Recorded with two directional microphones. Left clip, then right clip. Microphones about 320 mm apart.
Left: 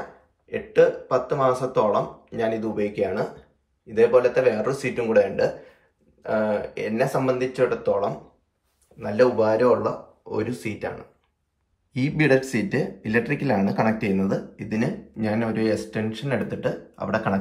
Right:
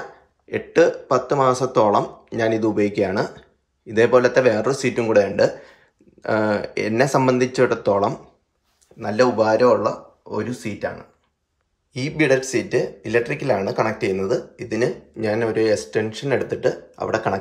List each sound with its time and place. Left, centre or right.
0.5 s speech: centre
11.9 s speech: centre